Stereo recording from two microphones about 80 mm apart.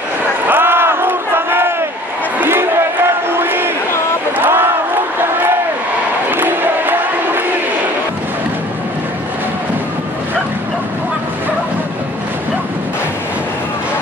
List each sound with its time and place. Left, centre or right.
0.5 s crowd: right